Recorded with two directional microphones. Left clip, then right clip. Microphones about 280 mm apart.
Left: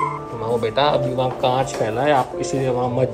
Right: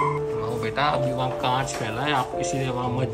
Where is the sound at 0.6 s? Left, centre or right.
Centre.